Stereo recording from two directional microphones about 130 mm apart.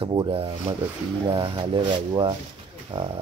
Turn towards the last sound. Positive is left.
turn(degrees=-40)  # may be behind; listen again after turning